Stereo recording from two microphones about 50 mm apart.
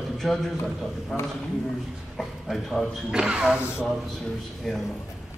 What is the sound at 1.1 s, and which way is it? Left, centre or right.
Speech, centre.